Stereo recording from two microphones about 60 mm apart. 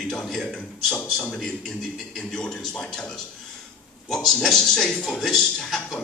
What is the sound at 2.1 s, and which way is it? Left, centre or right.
A man's voice, centre.